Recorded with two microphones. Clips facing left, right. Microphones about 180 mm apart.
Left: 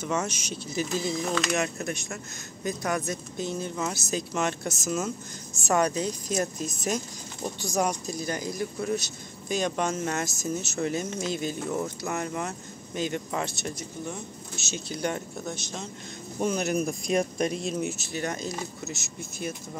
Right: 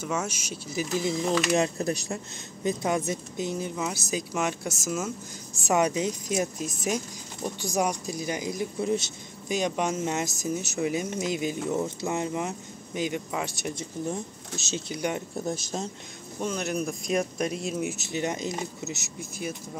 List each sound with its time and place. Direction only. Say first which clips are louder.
0.0 s speech: left 1 dB; 5° right (ahead or behind)
1.5 s speech: right 4 dB; 30° right (ahead or behind); by 6.4 s 15° right (ahead or behind)
7.6 s speech: even; 15° right (ahead or behind)
13.7 s speech: right 4 dB; 35° right (ahead or behind)
14.9 s speech: even; 15° right (ahead or behind)
16.3 s speech: left 3 dB; 10° left (ahead or behind)
17.9 s speech: right 2 dB; 20° right (ahead or behind)